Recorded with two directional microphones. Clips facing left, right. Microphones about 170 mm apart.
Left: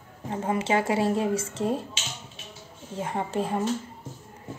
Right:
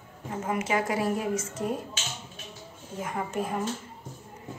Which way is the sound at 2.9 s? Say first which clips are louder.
Left 3 dB; 30° left (ahead or behind).